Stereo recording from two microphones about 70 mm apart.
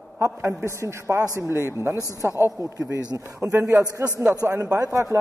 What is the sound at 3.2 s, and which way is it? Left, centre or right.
A man's voice, right.